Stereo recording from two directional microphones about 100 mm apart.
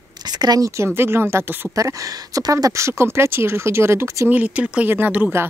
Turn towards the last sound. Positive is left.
turn(degrees=-15)  # may be behind; listen again after turning